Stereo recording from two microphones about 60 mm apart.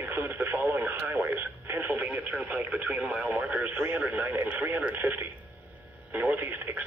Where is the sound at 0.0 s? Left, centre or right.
Right.